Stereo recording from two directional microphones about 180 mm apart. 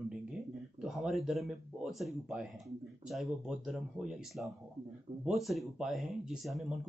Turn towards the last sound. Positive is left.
turn(degrees=0)  # may be behind; listen again after turning